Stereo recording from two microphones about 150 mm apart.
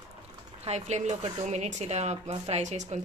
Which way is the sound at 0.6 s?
50° right (ahead or behind).